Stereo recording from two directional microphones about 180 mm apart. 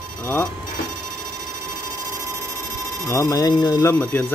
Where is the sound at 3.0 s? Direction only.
15° left (ahead or behind).